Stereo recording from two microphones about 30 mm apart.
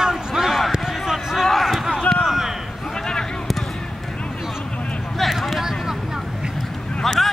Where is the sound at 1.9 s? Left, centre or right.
Left.